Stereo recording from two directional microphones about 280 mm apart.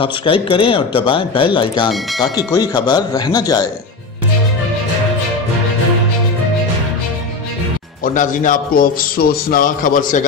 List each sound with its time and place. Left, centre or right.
0.0 s speech: centre
8.0 s a man's voice: left